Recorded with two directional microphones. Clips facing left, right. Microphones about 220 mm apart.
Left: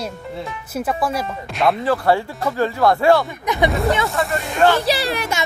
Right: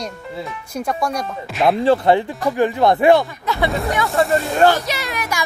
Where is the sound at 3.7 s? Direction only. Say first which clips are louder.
Left 2 dB; centre (ahead or behind).